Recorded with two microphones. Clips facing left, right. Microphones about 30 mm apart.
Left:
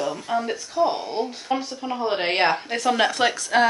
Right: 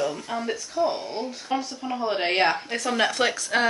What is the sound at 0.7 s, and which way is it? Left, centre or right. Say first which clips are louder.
Speech: left 4 dB; left.